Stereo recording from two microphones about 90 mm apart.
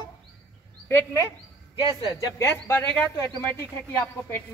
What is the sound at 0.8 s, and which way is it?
Speech, 25° left (ahead or behind).